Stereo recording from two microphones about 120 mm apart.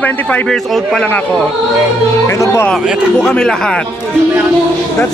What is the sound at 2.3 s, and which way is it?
Speech, 25° left (ahead or behind).